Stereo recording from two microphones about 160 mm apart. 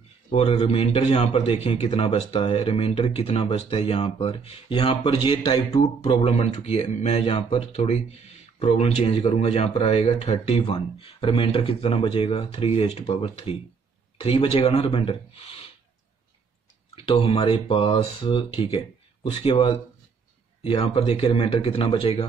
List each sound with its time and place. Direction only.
0.3 s a man's voice: 40° left (ahead or behind)
16.9 s a man's voice: 35° left (ahead or behind)